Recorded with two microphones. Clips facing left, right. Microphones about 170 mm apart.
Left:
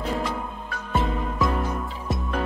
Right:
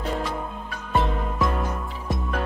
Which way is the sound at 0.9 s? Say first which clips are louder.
Right 1 dB; centre (ahead or behind).